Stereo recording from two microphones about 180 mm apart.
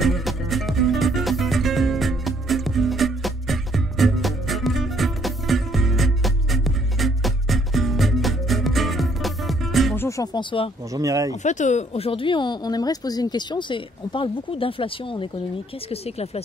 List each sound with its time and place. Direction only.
0.0 s music: centre (ahead or behind)
9.9 s music: 15° left (ahead or behind)
10.9 s speech: 20° right (ahead or behind)
11.4 s speech: 40° left (ahead or behind)